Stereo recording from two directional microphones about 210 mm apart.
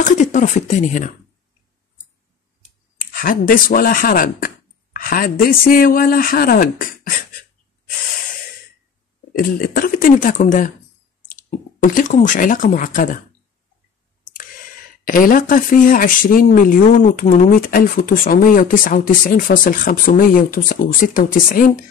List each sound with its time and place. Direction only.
0.0 s speech: 35° left (ahead or behind)
3.1 s speech: 40° left (ahead or behind)
9.4 s speech: 45° left (ahead or behind)
11.8 s speech: 40° left (ahead or behind)
15.0 s speech: 40° left (ahead or behind)